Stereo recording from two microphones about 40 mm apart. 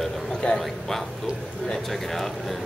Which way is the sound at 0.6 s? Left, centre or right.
Centre.